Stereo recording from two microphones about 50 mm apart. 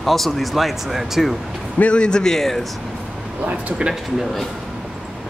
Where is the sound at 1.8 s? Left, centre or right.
Left; by 2.7 s centre.